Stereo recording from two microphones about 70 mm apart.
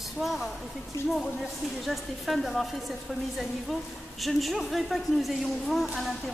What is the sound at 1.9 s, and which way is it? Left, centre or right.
Speech, centre.